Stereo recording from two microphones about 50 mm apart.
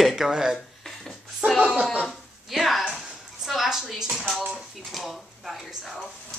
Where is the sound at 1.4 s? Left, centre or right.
Right.